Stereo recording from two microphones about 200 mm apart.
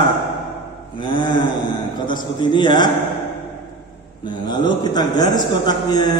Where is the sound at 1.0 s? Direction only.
25° left (ahead or behind).